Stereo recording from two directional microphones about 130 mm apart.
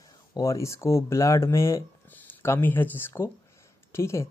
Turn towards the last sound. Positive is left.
turn(degrees=20)  # may be behind; listen again after turning